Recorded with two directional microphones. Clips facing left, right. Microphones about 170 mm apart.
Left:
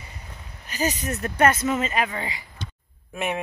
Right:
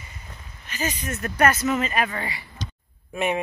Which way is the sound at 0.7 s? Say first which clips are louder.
Left 3 dB; 40° left (ahead or behind).